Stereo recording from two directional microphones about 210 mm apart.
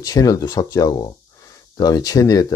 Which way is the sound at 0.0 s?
15° left (ahead or behind).